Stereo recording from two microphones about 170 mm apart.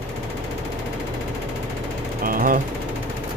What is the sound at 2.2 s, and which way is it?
Jackhammer, 55° right (ahead or behind).